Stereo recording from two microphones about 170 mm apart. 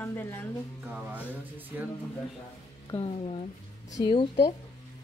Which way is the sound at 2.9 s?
35° left (ahead or behind).